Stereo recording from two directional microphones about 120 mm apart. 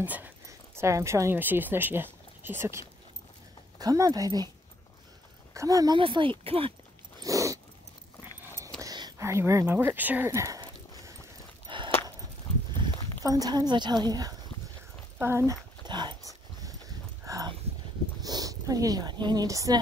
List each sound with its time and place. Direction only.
0.0 s speech: 15° right (ahead or behind)
0.5 s speech: 25° right (ahead or behind)
3.7 s a woman's voice: 30° right (ahead or behind)
5.5 s speech: 30° right (ahead or behind)
5.9 s speech: 45° right (ahead or behind)
7.2 s dog: 25° right (ahead or behind)
8.8 s whispering: 35° right (ahead or behind)
9.2 s speech: 25° right (ahead or behind)
11.7 s a sound: 45° right (ahead or behind)
13.2 s a woman's voice: 30° right (ahead or behind)
15.1 s dog: 20° right (ahead or behind)
15.9 s dog: 40° right (ahead or behind)
17.2 s a sound: 25° right (ahead or behind)
18.2 s speech: 30° right (ahead or behind)